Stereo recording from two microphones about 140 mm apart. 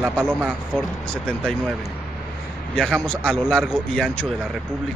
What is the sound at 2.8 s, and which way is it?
A man's voice, 5° left (ahead or behind).